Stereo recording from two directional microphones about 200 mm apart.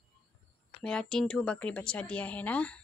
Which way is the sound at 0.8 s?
5° left (ahead or behind).